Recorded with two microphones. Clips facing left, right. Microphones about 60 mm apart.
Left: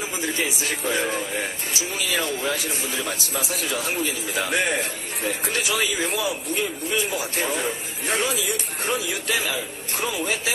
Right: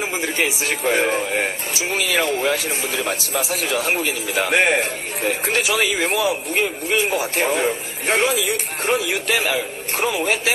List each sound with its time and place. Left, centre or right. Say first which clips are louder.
0.6 s speech: right 5 dB; right
1.7 s speech: right 5 dB; right
2.0 s speech: right 6 dB; right
7.4 s speech: right 6 dB; right